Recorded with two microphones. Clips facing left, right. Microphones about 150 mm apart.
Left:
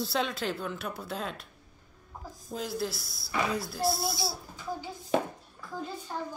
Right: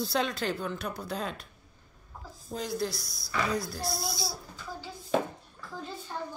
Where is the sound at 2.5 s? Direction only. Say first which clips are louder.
Right 1 dB; 5° left (ahead or behind).